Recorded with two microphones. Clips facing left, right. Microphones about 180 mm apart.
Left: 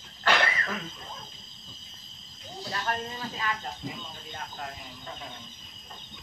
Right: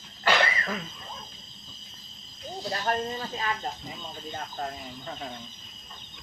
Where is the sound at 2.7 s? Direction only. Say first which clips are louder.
Right 4 dB; 35° right (ahead or behind).